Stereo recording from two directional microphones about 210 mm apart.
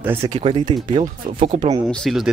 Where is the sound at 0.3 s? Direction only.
25° right (ahead or behind).